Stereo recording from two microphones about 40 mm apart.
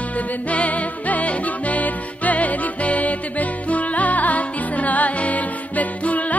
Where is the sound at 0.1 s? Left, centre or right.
Left.